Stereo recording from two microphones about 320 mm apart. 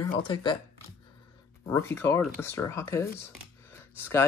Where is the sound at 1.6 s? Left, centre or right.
Centre.